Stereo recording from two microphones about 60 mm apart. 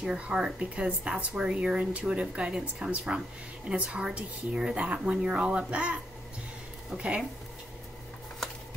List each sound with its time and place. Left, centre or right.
0.0 s speech: centre